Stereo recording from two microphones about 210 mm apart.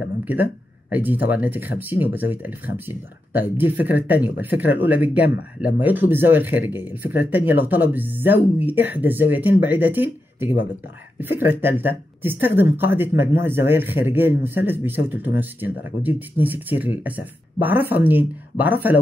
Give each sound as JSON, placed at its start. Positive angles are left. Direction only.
{"t": 0.2, "sound": "speech", "side_deg": -10}